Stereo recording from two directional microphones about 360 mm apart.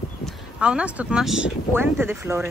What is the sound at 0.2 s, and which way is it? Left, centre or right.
Speech, centre.